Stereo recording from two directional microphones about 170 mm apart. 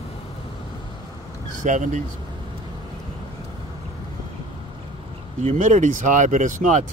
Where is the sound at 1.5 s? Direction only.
50° right (ahead or behind).